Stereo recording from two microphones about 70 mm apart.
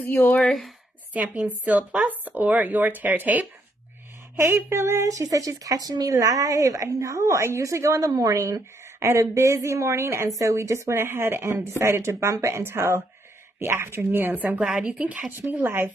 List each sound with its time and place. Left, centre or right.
0.1 s speech: left
0.5 s speech: centre
1.1 s speech: right
4.4 s speech: right
14.3 s a woman's voice: right
15.4 s speech: right